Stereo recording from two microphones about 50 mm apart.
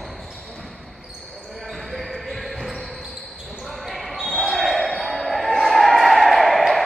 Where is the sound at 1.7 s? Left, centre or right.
Centre.